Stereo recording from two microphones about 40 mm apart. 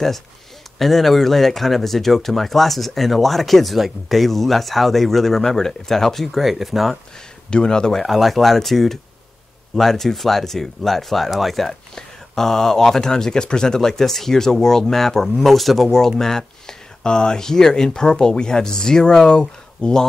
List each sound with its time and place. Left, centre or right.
0.7 s speech: centre
7.5 s speech: centre
8.0 s speech: centre